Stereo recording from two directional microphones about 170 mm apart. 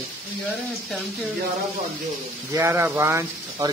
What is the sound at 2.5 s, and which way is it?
Speech, 15° right (ahead or behind).